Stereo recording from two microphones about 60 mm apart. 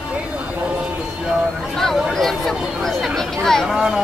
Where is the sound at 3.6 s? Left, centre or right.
Centre.